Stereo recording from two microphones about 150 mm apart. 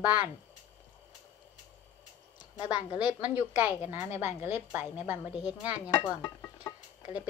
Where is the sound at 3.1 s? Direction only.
10° right (ahead or behind).